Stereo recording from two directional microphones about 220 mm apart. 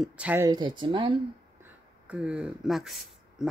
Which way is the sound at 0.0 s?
5° right (ahead or behind).